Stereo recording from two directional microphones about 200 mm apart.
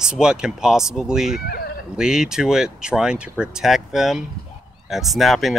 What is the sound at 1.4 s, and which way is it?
Sheep, 50° left (ahead or behind).